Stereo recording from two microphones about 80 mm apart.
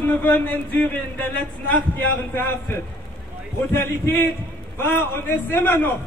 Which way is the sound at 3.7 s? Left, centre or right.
Left.